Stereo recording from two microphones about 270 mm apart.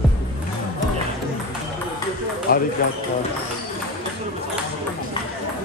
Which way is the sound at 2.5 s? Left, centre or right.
Left.